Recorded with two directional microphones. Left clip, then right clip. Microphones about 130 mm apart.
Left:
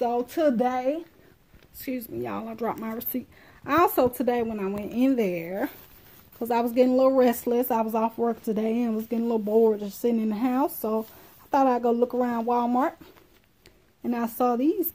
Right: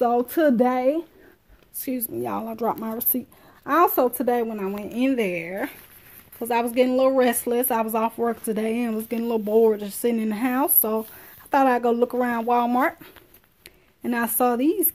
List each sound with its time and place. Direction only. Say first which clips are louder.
0.0 s speech: right 4 dB; 75° right (ahead or behind)
1.8 s speech: right 3 dB; 30° right (ahead or behind)
3.6 s speech: right 2 dB; centre (ahead or behind)
5.0 s a woman's voice: right 1 dB; 15° left (ahead or behind)
8.2 s speech: right 2 dB; 5° right (ahead or behind)
8.5 s a woman's voice: right 1 dB; 5° left (ahead or behind)